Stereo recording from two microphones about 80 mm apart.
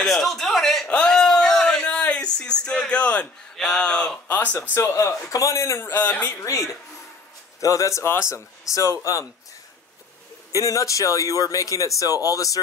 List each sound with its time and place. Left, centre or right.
0.0 s a man's voice: centre
0.8 s a sound: centre
3.5 s speech: centre
4.6 s a man's voice: left
6.3 s a man's voice: left
7.6 s a man's voice: left
10.5 s speech: left